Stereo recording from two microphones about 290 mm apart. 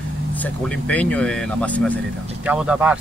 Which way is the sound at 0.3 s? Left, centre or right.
Centre.